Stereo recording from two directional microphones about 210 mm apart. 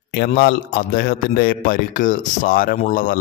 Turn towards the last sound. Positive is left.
turn(degrees=40)  # may be behind; listen again after turning